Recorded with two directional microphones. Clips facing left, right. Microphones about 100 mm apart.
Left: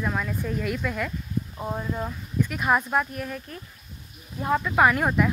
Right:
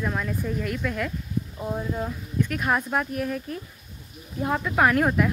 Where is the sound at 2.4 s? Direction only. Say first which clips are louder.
Left 2 dB; 5° left (ahead or behind).